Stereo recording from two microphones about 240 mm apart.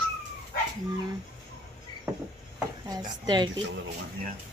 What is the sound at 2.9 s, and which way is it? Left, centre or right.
Speech, centre.